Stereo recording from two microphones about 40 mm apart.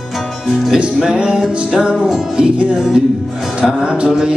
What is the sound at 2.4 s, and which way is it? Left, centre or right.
Speech, right.